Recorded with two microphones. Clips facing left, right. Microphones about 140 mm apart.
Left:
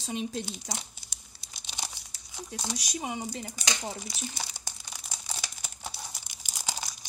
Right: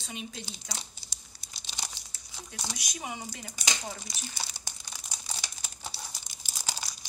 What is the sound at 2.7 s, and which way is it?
Speech, 35° left (ahead or behind).